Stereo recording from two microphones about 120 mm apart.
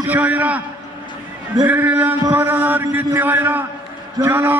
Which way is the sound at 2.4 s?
15° right (ahead or behind).